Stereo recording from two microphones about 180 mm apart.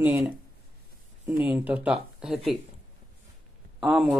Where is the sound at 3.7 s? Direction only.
Centre (ahead or behind).